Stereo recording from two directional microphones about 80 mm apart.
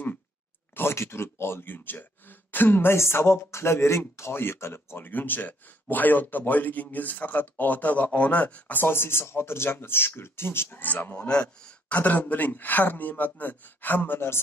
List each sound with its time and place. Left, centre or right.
0.7 s speech: left
11.2 s speech: centre; by 14.4 s left